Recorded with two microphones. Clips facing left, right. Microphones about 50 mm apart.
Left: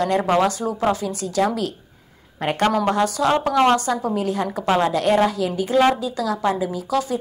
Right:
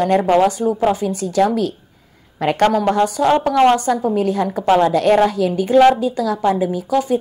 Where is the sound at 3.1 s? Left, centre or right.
Right.